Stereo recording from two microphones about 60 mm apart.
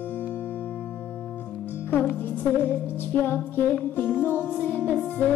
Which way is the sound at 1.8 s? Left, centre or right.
Left.